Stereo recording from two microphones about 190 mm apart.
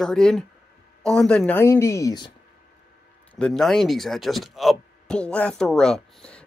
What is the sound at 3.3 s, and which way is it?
Speech, 5° left (ahead or behind).